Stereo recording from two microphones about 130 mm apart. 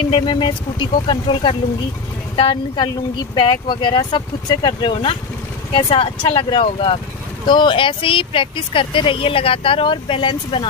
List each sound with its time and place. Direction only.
0.1 s speech: 45° left (ahead or behind)